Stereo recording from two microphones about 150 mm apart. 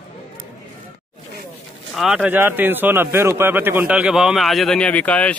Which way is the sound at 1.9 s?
5° right (ahead or behind).